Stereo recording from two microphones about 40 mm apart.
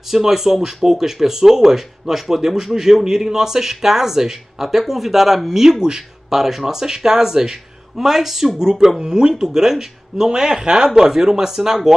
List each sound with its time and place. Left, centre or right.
0.1 s speech: centre